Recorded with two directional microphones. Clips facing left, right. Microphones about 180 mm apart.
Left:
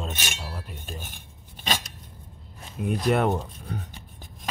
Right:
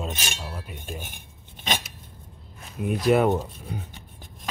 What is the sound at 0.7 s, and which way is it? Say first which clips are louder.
Speech: right 3 dB; 15° right (ahead or behind).